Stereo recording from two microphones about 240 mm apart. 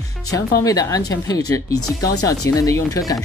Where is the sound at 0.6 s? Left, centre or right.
Centre.